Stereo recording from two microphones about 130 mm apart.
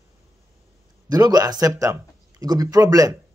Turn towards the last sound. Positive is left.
turn(degrees=-25)  # may be behind; listen again after turning